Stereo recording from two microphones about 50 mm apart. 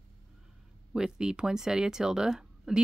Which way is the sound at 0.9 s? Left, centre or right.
Centre.